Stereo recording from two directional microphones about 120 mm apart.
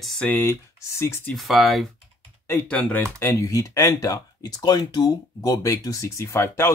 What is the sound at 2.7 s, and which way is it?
Speech, 10° left (ahead or behind).